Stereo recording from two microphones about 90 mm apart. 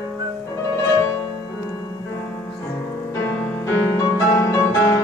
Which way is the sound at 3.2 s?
25° left (ahead or behind).